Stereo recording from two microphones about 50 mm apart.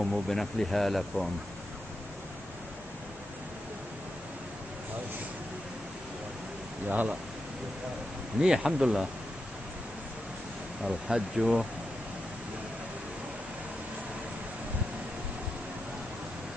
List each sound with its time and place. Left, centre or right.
0.0 s speech: centre
6.9 s speech: right
8.4 s speech: centre
10.8 s speech: centre